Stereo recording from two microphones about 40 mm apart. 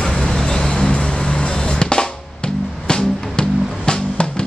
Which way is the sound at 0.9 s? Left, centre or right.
Left.